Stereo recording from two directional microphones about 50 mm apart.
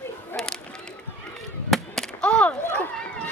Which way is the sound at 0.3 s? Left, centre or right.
Left.